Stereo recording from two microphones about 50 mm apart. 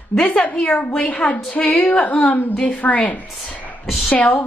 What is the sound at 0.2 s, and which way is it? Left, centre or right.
A woman's voice, left.